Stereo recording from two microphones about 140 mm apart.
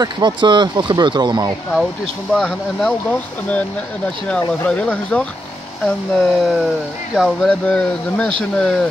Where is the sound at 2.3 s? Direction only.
5° left (ahead or behind).